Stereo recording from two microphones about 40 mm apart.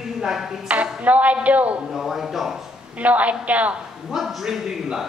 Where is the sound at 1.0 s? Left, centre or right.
Right.